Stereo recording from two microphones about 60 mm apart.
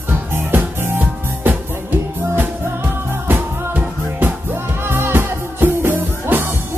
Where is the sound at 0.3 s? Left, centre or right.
Right.